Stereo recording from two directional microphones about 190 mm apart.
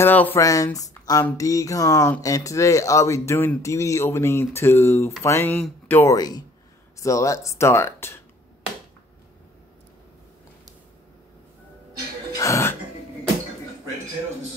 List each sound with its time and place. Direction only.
0.0 s speech: 10° left (ahead or behind)
12.4 s speech: 15° left (ahead or behind)